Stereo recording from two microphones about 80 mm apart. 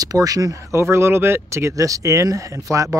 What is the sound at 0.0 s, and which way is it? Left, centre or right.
Speech, right.